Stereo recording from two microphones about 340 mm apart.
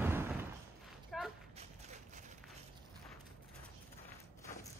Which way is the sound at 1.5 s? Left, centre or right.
Centre.